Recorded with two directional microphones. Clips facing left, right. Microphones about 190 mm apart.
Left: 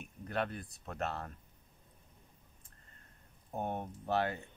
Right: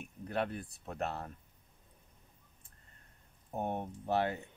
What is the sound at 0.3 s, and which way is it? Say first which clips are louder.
Speech: right 1 dB; 10° right (ahead or behind).